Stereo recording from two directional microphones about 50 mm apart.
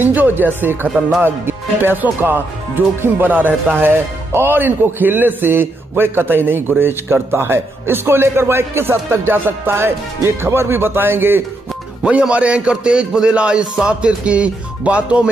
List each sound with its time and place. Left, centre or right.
0.0 s a man's voice: right
3.9 s a man's voice: right
10.2 s a man's voice: right
12.0 s speech: right